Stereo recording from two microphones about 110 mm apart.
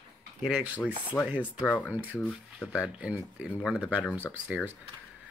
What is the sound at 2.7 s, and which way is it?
Speech, 10° right (ahead or behind).